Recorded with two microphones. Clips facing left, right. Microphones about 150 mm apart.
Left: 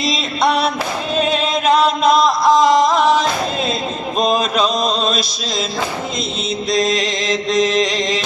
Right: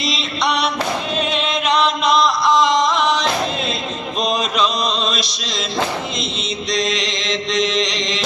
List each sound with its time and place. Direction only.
0.1 s music: 50° left (ahead or behind)
1.3 s chant: 45° left (ahead or behind)
4.2 s mantra: 50° left (ahead or behind)
6.8 s mantra: 45° left (ahead or behind)